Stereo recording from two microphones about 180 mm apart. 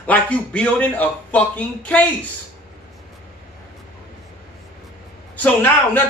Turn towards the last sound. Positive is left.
turn(degrees=10)  # may be behind; listen again after turning